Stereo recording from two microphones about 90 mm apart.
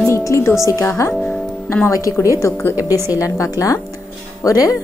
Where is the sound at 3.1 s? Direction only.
40° left (ahead or behind).